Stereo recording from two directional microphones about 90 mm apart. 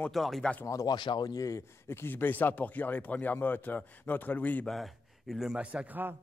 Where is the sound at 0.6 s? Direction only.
40° left (ahead or behind).